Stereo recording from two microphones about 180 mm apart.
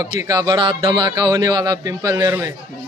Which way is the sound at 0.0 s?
20° right (ahead or behind).